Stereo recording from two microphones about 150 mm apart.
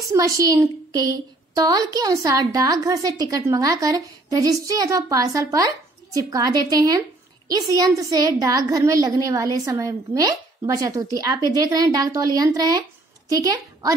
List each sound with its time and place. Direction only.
0.0 s a woman's voice: 20° right (ahead or behind)